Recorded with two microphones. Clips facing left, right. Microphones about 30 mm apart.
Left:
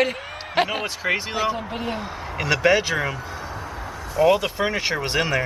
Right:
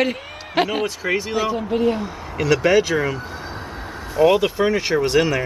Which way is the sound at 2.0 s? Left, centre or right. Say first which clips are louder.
Right 4 dB; centre.